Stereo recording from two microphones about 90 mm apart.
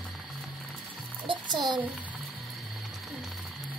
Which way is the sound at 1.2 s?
65° right (ahead or behind).